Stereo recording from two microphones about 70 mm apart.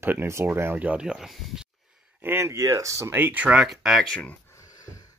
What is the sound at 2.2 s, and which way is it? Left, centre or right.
Speech, right.